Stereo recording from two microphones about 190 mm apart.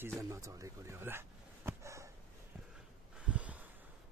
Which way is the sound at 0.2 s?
15° right (ahead or behind).